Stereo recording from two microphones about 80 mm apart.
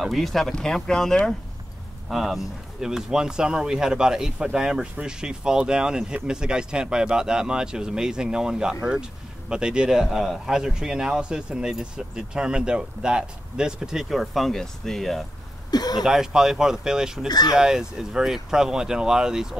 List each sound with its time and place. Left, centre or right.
0.0 s speech: centre
15.7 s speech: left
16.0 s speech: centre
17.3 s speech: left
17.6 s speech: centre